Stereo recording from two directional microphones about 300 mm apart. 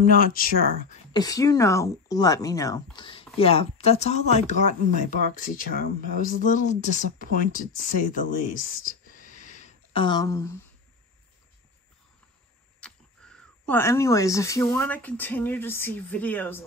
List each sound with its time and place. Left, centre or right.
0.0 s speech: left
1.1 s speech: centre; by 7.6 s left
8.6 s a sound: left; by 10.6 s centre
12.8 s speech: centre